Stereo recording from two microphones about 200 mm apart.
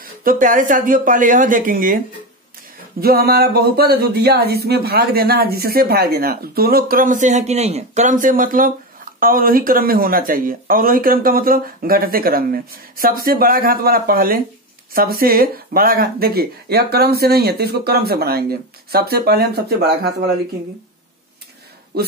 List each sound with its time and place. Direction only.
0.0 s speech: 45° right (ahead or behind)
3.0 s speech: 50° right (ahead or behind)